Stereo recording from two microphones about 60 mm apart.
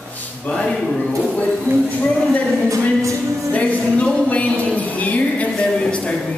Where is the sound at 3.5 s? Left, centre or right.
Left.